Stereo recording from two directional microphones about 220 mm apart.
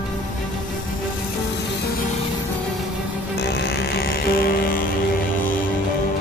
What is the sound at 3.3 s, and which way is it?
Music, 50° left (ahead or behind).